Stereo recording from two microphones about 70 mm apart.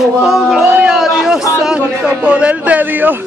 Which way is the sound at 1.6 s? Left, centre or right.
Centre.